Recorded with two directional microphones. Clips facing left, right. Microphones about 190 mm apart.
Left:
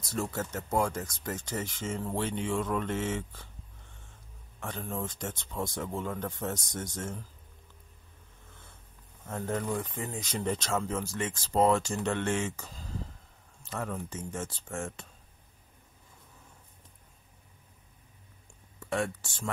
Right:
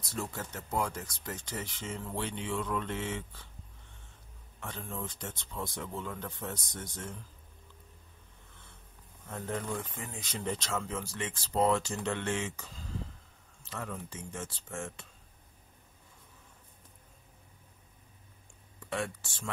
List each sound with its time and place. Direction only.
0.1 s speech: 45° left (ahead or behind)
4.6 s speech: 45° left (ahead or behind)
9.9 s speech: 40° left (ahead or behind)
18.9 s speech: 45° left (ahead or behind)